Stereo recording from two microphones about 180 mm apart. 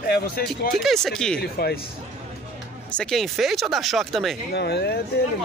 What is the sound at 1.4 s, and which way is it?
Speech, 60° left (ahead or behind).